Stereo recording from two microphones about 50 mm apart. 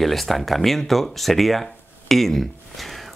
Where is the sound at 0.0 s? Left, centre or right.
Centre.